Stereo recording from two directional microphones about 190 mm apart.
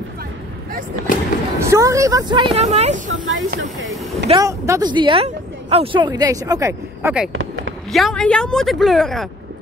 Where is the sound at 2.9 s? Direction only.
90° right.